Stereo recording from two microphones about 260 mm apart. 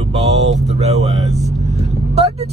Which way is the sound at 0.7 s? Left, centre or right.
Right.